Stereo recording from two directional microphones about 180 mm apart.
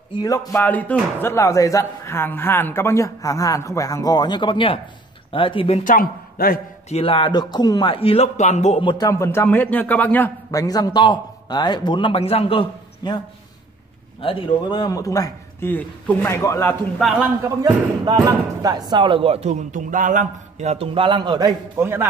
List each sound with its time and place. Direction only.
0.1 s a man's voice: 20° left (ahead or behind)
5.9 s a man's voice: 55° left (ahead or behind)
6.9 s speech: 30° left (ahead or behind)
8.9 s a man's voice: 20° left (ahead or behind)
14.2 s speech: 25° left (ahead or behind)
17.0 s a man's voice: 5° right (ahead or behind)
17.6 s speech: 20° right (ahead or behind)